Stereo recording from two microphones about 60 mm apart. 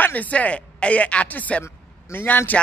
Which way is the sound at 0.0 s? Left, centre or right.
Left.